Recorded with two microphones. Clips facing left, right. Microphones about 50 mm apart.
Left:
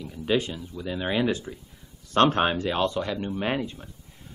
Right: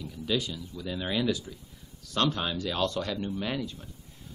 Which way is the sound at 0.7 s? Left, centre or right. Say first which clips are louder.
Left 4 dB; left.